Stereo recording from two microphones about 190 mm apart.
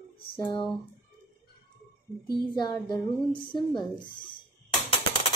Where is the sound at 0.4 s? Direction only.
20° left (ahead or behind).